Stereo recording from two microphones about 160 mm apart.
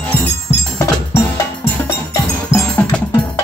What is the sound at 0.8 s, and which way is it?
Music, 20° left (ahead or behind).